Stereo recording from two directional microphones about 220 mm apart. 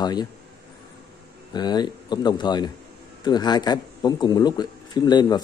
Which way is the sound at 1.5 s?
20° left (ahead or behind).